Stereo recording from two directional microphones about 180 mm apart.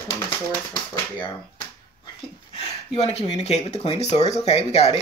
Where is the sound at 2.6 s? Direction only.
35° left (ahead or behind).